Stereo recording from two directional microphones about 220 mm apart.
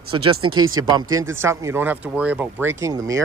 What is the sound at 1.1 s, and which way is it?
Speech, 10° right (ahead or behind).